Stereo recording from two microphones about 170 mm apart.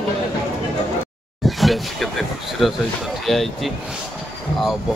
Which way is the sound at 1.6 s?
Centre (ahead or behind).